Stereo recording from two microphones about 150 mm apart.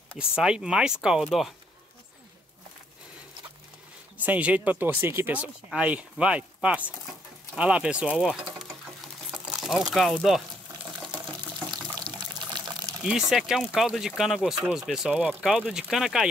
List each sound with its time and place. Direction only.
0.4 s speech: 5° right (ahead or behind)
4.2 s speech: 10° right (ahead or behind)
12.2 s water: 25° right (ahead or behind)
13.0 s speech: centre (ahead or behind)